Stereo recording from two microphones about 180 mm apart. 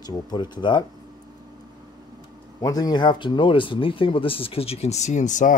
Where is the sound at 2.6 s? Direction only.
20° left (ahead or behind).